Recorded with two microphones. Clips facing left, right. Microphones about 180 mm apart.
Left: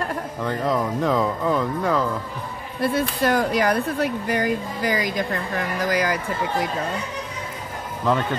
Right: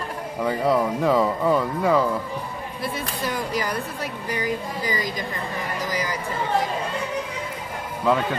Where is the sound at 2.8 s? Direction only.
70° left (ahead or behind).